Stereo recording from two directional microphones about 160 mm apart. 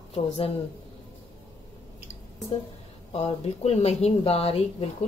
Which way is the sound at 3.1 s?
40° left (ahead or behind).